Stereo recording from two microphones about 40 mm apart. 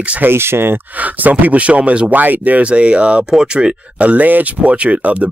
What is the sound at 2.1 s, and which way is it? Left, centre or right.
Speech, right.